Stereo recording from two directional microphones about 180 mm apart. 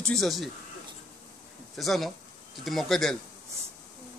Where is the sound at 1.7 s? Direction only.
Centre (ahead or behind).